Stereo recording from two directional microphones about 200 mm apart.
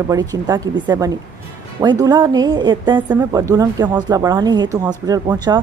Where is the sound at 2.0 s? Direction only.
20° right (ahead or behind).